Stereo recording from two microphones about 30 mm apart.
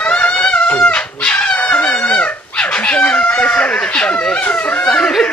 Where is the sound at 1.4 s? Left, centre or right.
Left.